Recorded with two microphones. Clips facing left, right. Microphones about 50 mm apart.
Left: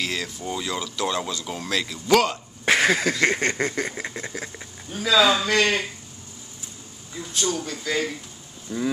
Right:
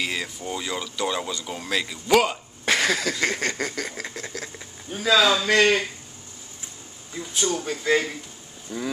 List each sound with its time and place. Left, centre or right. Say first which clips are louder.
0.0 s speech: even; centre
2.6 s a sound: left 3 dB; left
5.1 s a man's voice: left 1 dB; centre
5.5 s speech: right 2 dB; centre
7.3 s speech: right 1 dB; centre
8.6 s vehicle: left 4 dB; centre